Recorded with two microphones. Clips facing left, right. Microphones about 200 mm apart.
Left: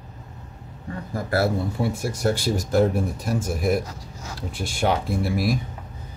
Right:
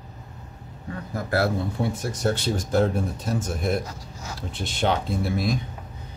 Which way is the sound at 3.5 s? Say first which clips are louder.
Left 3 dB; 5° left (ahead or behind).